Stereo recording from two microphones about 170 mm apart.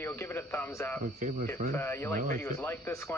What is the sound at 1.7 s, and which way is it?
Speech, 15° left (ahead or behind).